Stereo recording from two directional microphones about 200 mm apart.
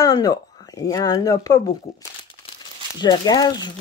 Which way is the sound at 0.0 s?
20° left (ahead or behind).